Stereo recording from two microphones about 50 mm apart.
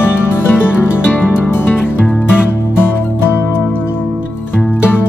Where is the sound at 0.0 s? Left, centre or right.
Left.